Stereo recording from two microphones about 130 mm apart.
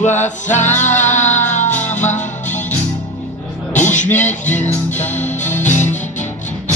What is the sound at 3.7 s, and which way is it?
Music, 70° left (ahead or behind).